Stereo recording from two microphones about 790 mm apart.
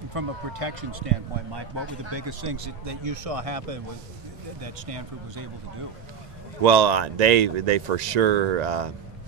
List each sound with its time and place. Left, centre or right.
0.1 s speech: right
1.5 s speech: right
6.6 s speech: right